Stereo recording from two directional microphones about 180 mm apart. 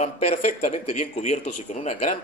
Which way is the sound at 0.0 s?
40° left (ahead or behind).